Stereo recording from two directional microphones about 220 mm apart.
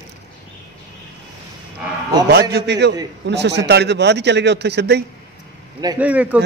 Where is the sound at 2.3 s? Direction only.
45° right (ahead or behind).